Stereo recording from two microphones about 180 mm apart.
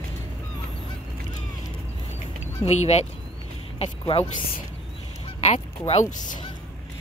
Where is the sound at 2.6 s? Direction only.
40° left (ahead or behind).